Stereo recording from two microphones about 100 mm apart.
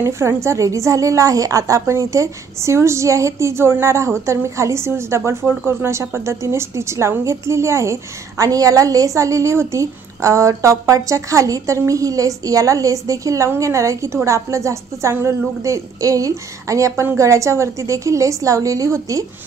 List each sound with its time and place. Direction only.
0.0 s a woman's voice: 30° right (ahead or behind)